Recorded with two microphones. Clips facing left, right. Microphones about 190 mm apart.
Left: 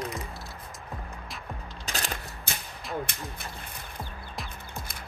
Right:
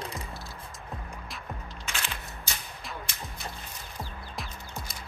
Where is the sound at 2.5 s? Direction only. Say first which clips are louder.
Left 2 dB; 55° left (ahead or behind).